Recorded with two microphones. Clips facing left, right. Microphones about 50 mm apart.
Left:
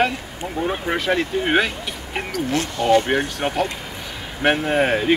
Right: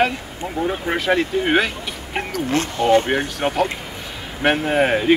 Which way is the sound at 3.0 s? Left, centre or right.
Centre.